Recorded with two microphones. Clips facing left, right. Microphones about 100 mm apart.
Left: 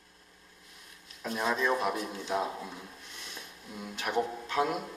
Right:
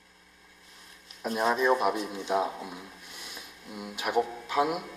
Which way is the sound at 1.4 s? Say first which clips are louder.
Right 4 dB; 20° right (ahead or behind).